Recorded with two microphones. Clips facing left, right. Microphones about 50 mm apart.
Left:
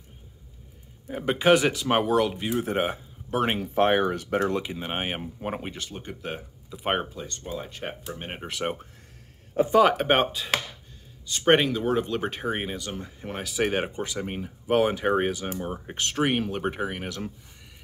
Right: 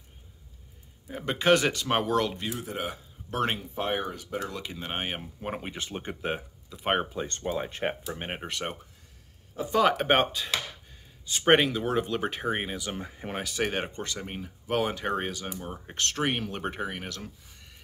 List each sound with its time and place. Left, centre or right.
1.0 s speech: centre
2.6 s speech: left
3.3 s speech: centre
3.6 s speech: left
4.6 s speech: centre
5.8 s speech: right
6.7 s speech: centre
7.2 s speech: right
8.1 s speech: centre
8.5 s speech: centre
9.8 s speech: centre
12.8 s speech: centre
13.4 s speech: centre